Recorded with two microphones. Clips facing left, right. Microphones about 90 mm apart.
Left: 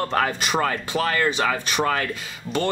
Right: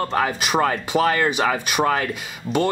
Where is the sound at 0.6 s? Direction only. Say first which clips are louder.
Right 5 dB; 20° right (ahead or behind).